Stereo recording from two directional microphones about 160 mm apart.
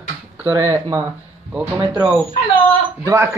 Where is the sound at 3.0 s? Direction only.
15° right (ahead or behind).